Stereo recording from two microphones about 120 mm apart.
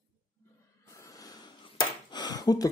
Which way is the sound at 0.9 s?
30° left (ahead or behind).